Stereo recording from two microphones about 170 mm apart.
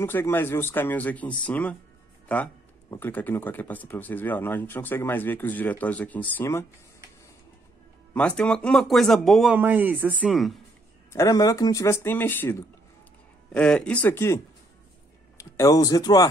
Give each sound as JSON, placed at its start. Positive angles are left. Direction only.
{"t": 0.0, "sound": "speech", "side_deg": 15}
{"t": 8.1, "sound": "speech", "side_deg": 5}
{"t": 9.6, "sound": "speech", "side_deg": -10}
{"t": 10.2, "sound": "speech", "side_deg": 0}
{"t": 11.1, "sound": "speech", "side_deg": 20}